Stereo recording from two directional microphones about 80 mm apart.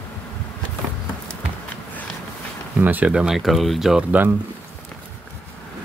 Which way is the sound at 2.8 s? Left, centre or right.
Right.